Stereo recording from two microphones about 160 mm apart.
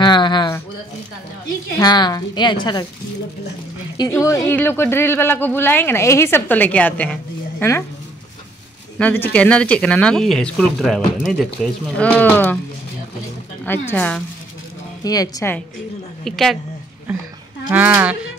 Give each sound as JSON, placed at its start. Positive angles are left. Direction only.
{"t": 0.0, "sound": "a woman's voice", "side_deg": 30}
{"t": 1.8, "sound": "a woman's voice", "side_deg": 25}
{"t": 4.3, "sound": "speech", "side_deg": 15}
{"t": 8.9, "sound": "speech", "side_deg": 10}
{"t": 13.7, "sound": "speech", "side_deg": 10}
{"t": 15.0, "sound": "a woman's voice", "side_deg": 25}
{"t": 16.3, "sound": "a woman's voice", "side_deg": 0}
{"t": 17.6, "sound": "speech", "side_deg": -10}